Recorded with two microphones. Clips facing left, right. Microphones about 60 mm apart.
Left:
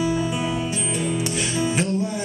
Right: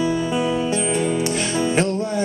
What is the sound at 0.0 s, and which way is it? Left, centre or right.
Music, centre.